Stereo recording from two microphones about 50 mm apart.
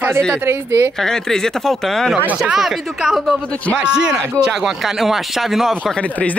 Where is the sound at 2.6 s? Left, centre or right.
Centre.